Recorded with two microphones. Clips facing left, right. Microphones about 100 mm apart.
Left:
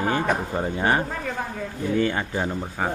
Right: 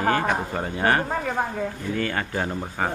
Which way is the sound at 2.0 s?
15° left (ahead or behind).